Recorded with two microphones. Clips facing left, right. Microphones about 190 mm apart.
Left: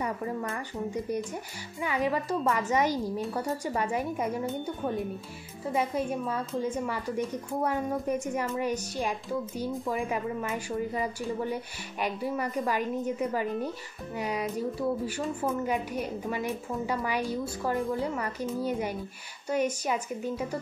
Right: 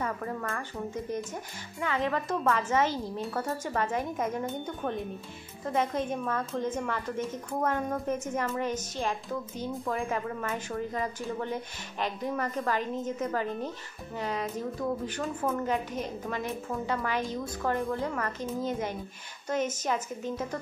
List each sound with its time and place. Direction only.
0.0 s speech: 15° left (ahead or behind)
1.8 s a woman's voice: 10° left (ahead or behind)